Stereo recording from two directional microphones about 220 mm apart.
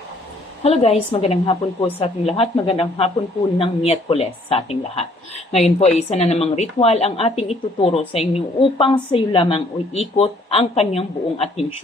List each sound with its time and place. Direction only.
0.7 s a woman's voice: 25° left (ahead or behind)